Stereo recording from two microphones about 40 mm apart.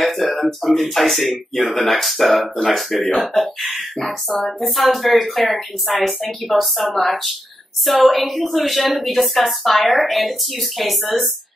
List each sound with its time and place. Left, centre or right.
0.0 s speech: centre